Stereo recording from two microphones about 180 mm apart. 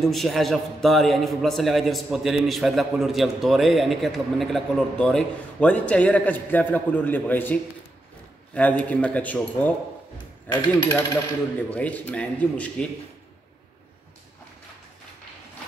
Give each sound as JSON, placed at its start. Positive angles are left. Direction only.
{"t": 0.0, "sound": "a man's voice", "side_deg": 0}
{"t": 8.5, "sound": "speech", "side_deg": 10}
{"t": 10.1, "sound": "coin", "side_deg": 20}
{"t": 11.5, "sound": "speech", "side_deg": 10}